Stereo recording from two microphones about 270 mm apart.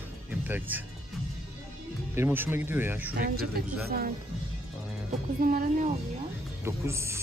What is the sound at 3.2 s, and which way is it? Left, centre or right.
Speech, right.